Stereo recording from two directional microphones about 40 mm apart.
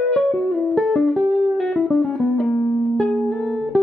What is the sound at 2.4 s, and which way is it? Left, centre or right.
Music, left.